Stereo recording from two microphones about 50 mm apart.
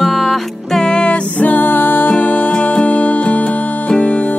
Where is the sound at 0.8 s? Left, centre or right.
Centre.